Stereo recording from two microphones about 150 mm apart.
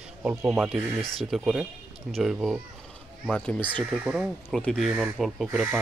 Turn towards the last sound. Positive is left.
turn(degrees=-5)  # may be behind; listen again after turning